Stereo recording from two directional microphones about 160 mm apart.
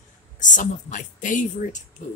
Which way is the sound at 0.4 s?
50° left (ahead or behind).